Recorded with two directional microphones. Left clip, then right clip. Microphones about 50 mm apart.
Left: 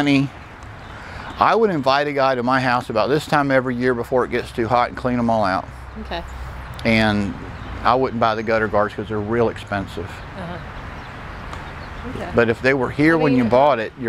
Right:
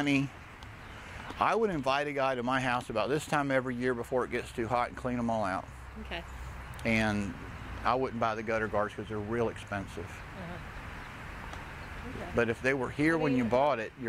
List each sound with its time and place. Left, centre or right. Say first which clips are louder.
0.0 s speech: left 12 dB; left
1.4 s speech: left 13 dB; centre
4.3 s speech: left 13 dB; left
6.8 s speech: left 12 dB; left
12.2 s speech: left 13 dB; left